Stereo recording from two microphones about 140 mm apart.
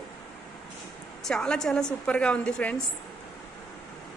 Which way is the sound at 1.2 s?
5° left (ahead or behind).